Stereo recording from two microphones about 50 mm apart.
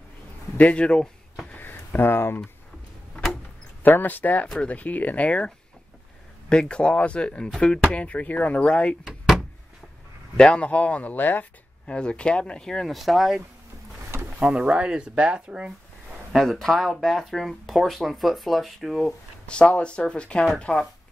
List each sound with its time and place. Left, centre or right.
0.6 s speech: left
1.6 s a sound: left
3.8 s speech: left
6.5 s speech: centre
9.0 s door: centre
10.3 s speech: centre; by 11.4 s left
11.8 s speech: left
12.8 s speech: centre
14.4 s speech: right
16.3 s speech: centre
19.4 s speech: centre